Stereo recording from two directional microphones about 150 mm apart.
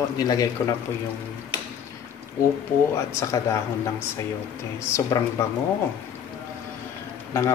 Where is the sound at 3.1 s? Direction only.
20° left (ahead or behind).